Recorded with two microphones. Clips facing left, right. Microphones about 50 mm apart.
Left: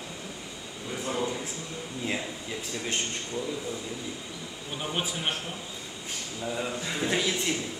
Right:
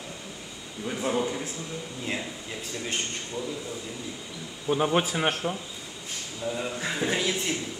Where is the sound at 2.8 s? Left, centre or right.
Centre.